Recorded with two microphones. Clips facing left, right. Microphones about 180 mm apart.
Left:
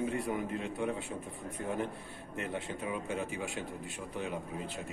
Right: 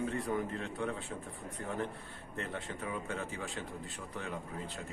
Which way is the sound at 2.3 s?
20° left (ahead or behind).